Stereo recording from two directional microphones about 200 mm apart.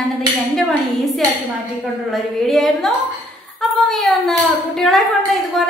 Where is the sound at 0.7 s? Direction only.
Centre (ahead or behind).